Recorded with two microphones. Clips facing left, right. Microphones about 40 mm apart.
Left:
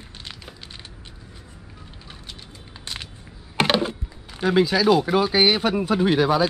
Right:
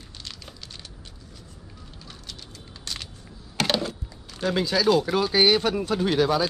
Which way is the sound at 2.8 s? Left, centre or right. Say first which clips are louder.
Left 1 dB; left.